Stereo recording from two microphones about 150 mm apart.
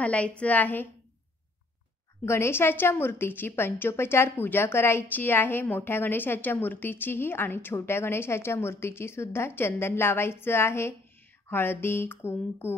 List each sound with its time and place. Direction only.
0.0 s a woman's voice: 10° left (ahead or behind)
2.2 s a woman's voice: 15° left (ahead or behind)